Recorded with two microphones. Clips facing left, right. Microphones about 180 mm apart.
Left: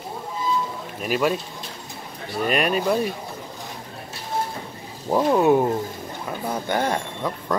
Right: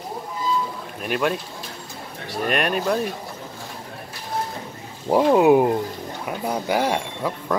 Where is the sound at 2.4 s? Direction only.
Centre (ahead or behind).